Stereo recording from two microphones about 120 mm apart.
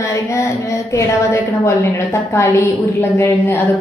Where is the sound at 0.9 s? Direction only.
25° left (ahead or behind).